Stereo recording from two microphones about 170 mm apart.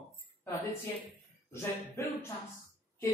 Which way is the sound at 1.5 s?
15° left (ahead or behind).